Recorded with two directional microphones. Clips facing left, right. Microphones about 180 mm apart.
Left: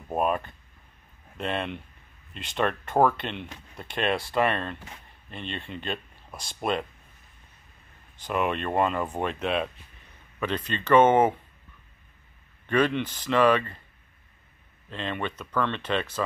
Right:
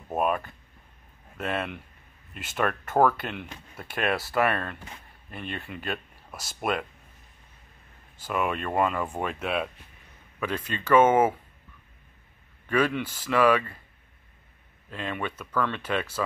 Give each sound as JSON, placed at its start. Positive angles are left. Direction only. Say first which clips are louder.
{"t": 0.1, "sound": "speech", "louder": "even", "side_deg": -5}
{"t": 1.4, "sound": "speech", "louder": "even", "side_deg": -5}
{"t": 4.4, "sound": "speech", "louder": "right 1 dB", "side_deg": 25}
{"t": 5.7, "sound": "speech", "louder": "even", "side_deg": -5}
{"t": 8.2, "sound": "speech", "louder": "left 1 dB", "side_deg": -5}
{"t": 12.6, "sound": "speech", "louder": "left 1 dB", "side_deg": -5}
{"t": 14.9, "sound": "speech", "louder": "left 1 dB", "side_deg": -10}